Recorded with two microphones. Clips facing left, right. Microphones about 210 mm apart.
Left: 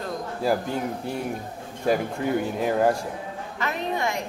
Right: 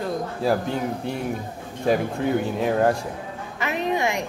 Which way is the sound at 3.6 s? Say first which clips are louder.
Right 4 dB; 15° right (ahead or behind).